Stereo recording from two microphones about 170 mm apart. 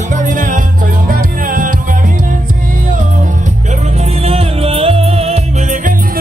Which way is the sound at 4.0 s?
35° right (ahead or behind).